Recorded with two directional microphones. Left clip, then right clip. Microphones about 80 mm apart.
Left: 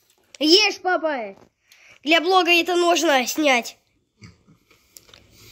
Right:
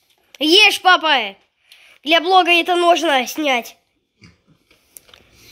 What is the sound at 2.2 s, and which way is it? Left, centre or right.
Speech, centre.